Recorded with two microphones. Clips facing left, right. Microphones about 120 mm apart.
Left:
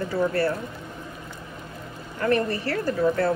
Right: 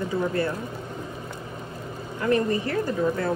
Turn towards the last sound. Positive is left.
turn(degrees=-20)  # may be behind; listen again after turning